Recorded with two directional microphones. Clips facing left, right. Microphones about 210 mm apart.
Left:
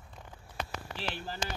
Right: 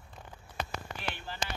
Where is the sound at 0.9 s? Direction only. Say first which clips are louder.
Left 3 dB; 35° left (ahead or behind).